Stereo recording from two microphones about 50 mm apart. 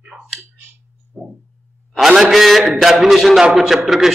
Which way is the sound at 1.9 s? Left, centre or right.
Centre.